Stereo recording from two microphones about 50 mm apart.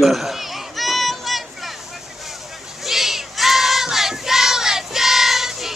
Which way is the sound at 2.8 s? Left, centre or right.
Centre.